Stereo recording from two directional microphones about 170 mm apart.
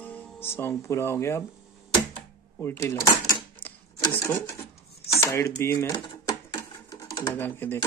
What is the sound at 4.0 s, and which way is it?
Sewing machine, 15° left (ahead or behind).